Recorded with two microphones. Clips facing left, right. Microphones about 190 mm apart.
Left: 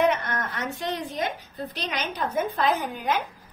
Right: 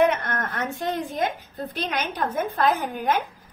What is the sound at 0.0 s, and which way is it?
A woman's voice, 50° right (ahead or behind).